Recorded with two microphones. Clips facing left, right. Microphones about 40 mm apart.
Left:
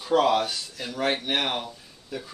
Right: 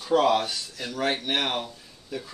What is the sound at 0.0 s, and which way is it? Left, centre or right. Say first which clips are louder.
Speech: even; centre.